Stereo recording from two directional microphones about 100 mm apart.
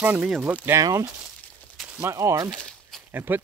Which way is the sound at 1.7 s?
10° right (ahead or behind).